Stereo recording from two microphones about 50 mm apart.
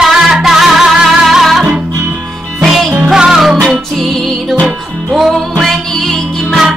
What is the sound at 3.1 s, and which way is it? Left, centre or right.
Music, centre.